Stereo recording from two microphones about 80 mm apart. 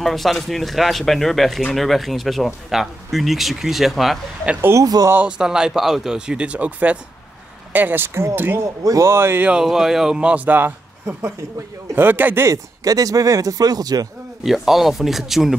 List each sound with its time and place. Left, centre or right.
0.0 s speech: centre
4.6 s speech: right
4.8 s speech: right
5.4 s speech: centre; by 8.4 s right
8.8 s speech: right
9.1 s speech: right
9.4 s speech: centre
12.4 s speech: right
14.4 s speech: centre